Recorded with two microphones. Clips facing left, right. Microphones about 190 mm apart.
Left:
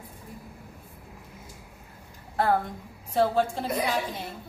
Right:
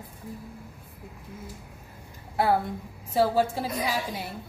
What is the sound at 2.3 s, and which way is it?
A woman's voice, 10° right (ahead or behind).